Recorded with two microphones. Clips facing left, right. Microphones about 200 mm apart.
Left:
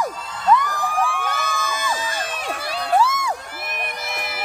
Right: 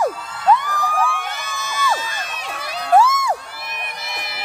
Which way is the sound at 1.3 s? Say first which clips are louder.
Left 4 dB; 50° left (ahead or behind).